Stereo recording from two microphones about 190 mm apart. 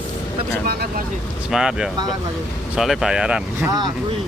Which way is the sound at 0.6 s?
55° right (ahead or behind).